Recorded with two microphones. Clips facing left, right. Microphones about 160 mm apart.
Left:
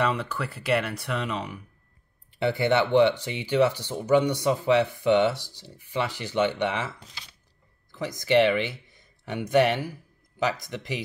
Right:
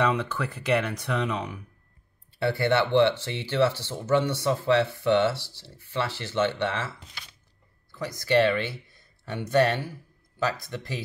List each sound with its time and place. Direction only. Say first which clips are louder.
0.0 s speech: right 1 dB; 10° left (ahead or behind)
2.3 s speech: left 1 dB; 20° left (ahead or behind)
7.9 s speech: left 1 dB; 20° left (ahead or behind)